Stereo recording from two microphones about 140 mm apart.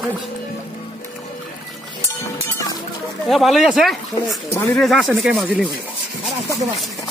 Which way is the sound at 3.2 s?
Centre (ahead or behind).